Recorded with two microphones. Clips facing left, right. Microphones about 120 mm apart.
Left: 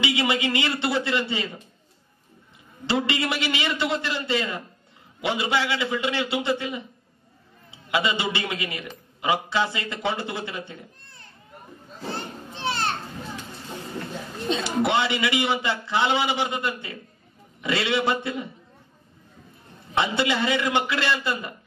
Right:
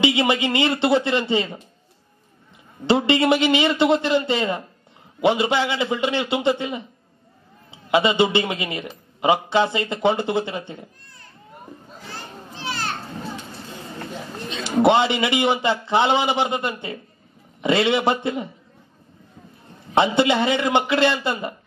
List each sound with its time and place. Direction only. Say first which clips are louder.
0.0 s a man's voice: right 5 dB; 25° right (ahead or behind)
2.9 s a man's voice: right 8 dB; 25° right (ahead or behind)
7.9 s a man's voice: right 7 dB; 25° right (ahead or behind)
12.0 s children playing: left 6 dB; 25° left (ahead or behind)
14.6 s a man's voice: right 8 dB; 25° right (ahead or behind)
19.9 s a man's voice: right 6 dB; 25° right (ahead or behind)